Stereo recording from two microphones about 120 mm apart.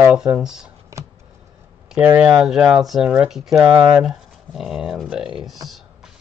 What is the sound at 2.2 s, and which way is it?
Speech, 5° right (ahead or behind).